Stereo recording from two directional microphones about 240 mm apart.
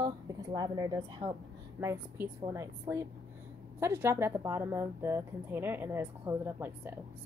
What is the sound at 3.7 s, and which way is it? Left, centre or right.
Speech, centre.